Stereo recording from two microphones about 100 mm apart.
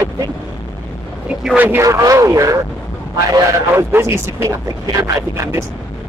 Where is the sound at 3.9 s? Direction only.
30° right (ahead or behind).